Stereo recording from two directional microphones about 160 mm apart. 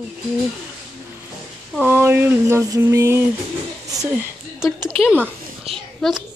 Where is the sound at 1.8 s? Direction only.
15° right (ahead or behind).